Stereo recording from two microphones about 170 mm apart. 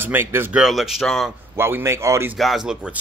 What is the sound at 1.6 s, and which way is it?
Speech, 15° right (ahead or behind).